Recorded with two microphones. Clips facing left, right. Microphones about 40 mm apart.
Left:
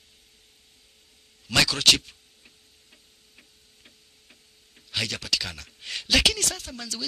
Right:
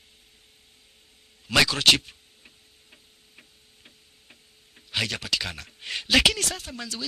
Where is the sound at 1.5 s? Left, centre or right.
Centre.